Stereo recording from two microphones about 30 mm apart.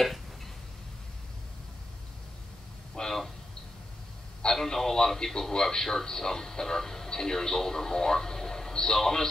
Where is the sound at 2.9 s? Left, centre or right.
Centre.